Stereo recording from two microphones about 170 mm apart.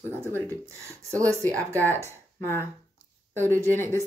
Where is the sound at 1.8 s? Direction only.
15° left (ahead or behind).